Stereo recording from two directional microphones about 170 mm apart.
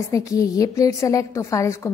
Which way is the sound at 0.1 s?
20° left (ahead or behind).